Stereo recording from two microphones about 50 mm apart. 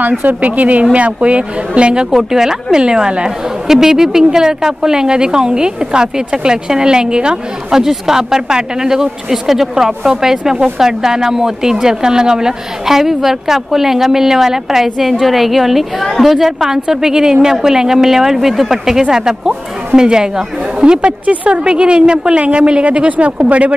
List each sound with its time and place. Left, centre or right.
0.2 s a woman's voice: right